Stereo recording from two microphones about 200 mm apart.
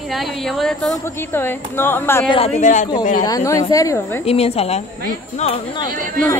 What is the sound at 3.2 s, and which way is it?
Speech, 15° left (ahead or behind).